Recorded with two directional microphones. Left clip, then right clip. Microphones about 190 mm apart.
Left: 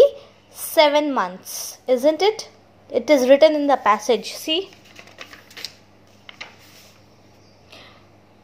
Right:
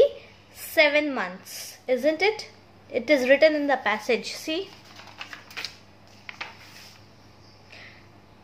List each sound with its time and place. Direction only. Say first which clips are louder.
0.7 s a woman's voice: left 5 dB; 25° left (ahead or behind)